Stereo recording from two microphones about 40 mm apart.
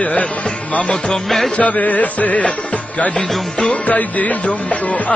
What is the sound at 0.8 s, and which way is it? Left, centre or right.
Music, centre.